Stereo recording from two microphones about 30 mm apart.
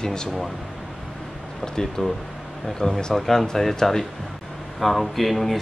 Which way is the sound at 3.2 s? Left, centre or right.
Centre.